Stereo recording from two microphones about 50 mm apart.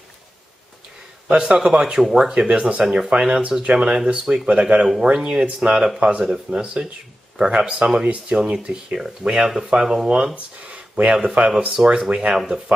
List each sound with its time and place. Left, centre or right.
1.3 s speech: centre; by 11.5 s right
11.7 s speech: centre